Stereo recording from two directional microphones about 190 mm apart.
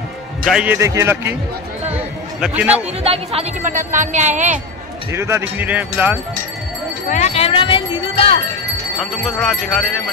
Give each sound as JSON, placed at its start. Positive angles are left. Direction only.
{"t": 0.5, "sound": "speech", "side_deg": -5}
{"t": 0.7, "sound": "speech", "side_deg": -15}
{"t": 2.4, "sound": "speech", "side_deg": -5}
{"t": 3.0, "sound": "speech", "side_deg": -30}
{"t": 5.1, "sound": "speech", "side_deg": -15}
{"t": 7.1, "sound": "speech", "side_deg": 35}
{"t": 9.2, "sound": "speech", "side_deg": 0}